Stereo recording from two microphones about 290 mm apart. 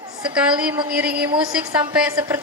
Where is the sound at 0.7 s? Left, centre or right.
Centre.